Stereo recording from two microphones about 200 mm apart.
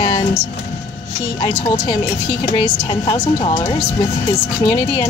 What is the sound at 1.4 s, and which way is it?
A woman's voice, 20° left (ahead or behind).